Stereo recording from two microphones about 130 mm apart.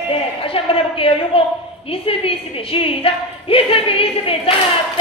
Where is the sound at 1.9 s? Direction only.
45° left (ahead or behind).